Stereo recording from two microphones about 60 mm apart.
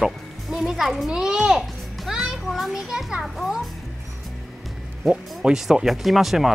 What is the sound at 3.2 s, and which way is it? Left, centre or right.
Speech, centre.